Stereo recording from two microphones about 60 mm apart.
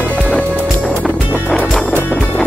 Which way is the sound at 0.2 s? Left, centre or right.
Centre.